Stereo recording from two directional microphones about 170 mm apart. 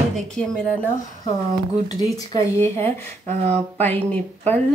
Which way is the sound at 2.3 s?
40° right (ahead or behind).